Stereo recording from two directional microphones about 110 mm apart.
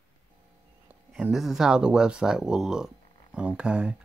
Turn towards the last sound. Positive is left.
turn(degrees=-10)  # may be behind; listen again after turning